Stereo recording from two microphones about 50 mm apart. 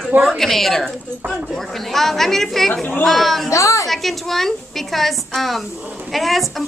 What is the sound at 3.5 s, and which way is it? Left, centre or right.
Speech, left.